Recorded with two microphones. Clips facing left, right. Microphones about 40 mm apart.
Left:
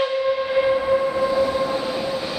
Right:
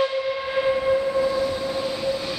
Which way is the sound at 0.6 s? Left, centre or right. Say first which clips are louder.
Left 2 dB; centre.